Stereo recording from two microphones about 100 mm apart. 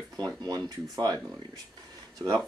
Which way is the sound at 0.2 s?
40° right (ahead or behind).